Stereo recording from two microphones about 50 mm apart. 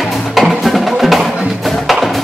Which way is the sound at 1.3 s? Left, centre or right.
Centre.